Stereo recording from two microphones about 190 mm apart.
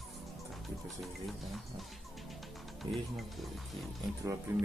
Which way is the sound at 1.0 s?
Centre (ahead or behind).